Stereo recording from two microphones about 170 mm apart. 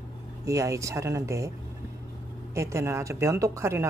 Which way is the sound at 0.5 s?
20° right (ahead or behind).